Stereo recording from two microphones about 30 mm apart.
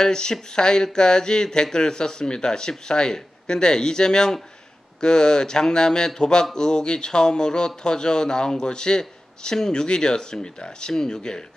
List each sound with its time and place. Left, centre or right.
0.0 s speech: left